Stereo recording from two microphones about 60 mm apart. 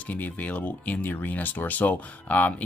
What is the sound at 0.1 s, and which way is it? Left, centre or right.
Speech, left.